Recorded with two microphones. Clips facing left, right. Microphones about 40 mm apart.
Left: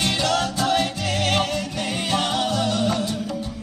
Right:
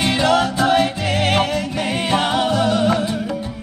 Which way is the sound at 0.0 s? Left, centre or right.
Centre.